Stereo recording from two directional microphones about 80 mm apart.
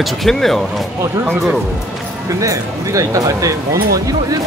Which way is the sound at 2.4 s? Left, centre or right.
Right.